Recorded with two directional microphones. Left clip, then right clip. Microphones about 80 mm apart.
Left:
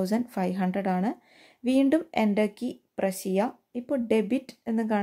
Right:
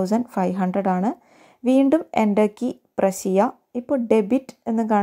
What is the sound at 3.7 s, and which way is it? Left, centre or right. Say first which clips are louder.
A woman's voice: right 6 dB; right.